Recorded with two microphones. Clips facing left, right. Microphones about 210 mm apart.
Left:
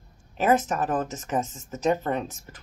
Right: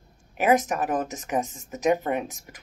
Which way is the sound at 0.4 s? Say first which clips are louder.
Right 1 dB; 15° right (ahead or behind).